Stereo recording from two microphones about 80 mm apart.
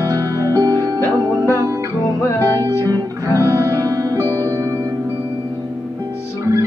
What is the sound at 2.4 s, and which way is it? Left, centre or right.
Music, left.